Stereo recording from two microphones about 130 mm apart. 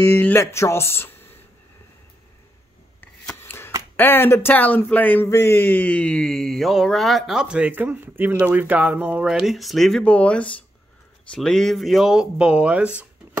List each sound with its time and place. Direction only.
0.0 s speech: 15° left (ahead or behind)
3.0 s a sound: 15° left (ahead or behind)
3.9 s speech: 15° left (ahead or behind); by 13.0 s 10° right (ahead or behind)